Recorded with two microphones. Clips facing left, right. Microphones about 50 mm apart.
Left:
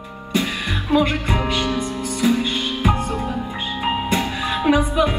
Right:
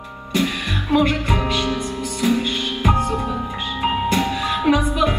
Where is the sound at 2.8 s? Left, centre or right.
Left.